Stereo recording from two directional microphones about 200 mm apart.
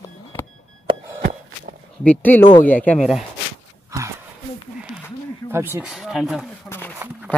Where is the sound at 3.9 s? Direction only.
15° right (ahead or behind).